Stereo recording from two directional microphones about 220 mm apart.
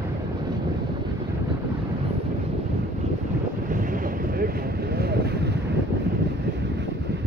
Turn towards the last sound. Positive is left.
turn(degrees=-50)  # may be behind; listen again after turning